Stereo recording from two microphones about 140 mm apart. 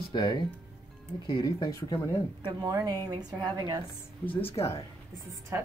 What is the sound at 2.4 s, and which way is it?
A woman's voice, 25° right (ahead or behind).